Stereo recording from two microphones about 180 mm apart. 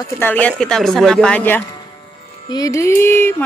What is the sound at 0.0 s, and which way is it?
Speech, 10° left (ahead or behind).